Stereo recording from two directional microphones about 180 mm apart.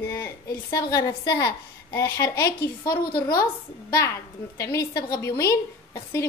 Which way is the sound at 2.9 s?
55° left (ahead or behind).